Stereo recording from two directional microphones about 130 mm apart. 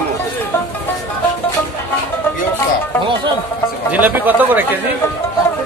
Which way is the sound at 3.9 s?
10° right (ahead or behind).